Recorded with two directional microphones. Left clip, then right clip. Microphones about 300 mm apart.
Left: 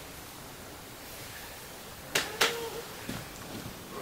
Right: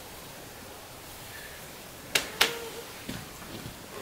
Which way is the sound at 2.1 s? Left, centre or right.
Centre.